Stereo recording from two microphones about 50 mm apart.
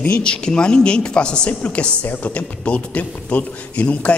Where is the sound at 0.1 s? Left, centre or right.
Centre.